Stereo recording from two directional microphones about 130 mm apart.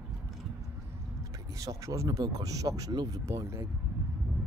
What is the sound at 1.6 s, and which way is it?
Speech, 25° right (ahead or behind).